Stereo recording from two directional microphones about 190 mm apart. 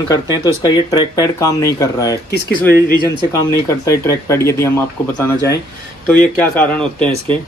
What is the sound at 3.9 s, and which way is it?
Speech, 15° left (ahead or behind).